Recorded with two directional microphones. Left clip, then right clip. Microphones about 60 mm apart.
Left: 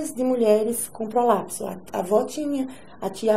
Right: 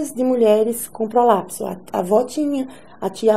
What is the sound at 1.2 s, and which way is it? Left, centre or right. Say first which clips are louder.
A woman's voice: right 4 dB; right.